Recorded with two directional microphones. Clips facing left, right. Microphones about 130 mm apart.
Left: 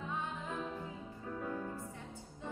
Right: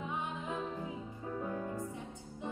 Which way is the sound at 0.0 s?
15° right (ahead or behind).